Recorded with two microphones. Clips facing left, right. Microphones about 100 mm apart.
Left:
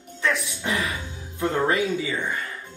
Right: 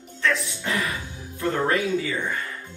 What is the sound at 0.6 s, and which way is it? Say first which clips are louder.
Speech: even; 15° left (ahead or behind).